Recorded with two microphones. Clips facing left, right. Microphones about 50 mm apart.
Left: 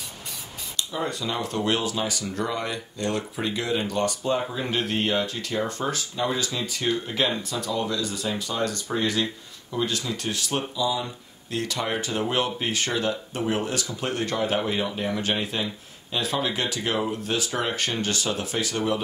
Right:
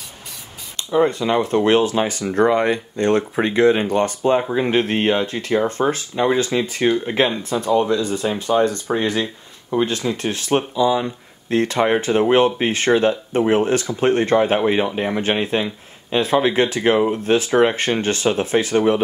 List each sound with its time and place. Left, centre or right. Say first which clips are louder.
0.7 s speech: right 12 dB; right